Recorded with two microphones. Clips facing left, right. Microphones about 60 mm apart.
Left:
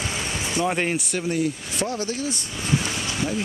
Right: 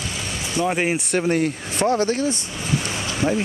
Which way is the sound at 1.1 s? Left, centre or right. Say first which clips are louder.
Right 4 dB; right.